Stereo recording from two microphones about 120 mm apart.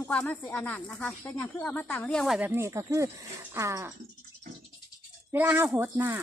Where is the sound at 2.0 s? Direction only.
Centre (ahead or behind).